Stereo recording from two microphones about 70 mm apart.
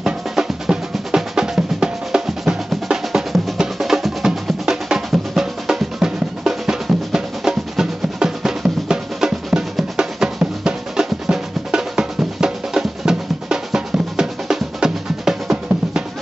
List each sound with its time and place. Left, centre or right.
0.0 s drum: centre